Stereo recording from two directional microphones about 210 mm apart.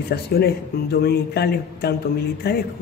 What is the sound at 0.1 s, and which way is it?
Speech, 50° left (ahead or behind).